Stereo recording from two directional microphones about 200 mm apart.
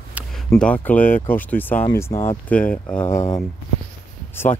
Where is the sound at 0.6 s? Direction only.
5° left (ahead or behind).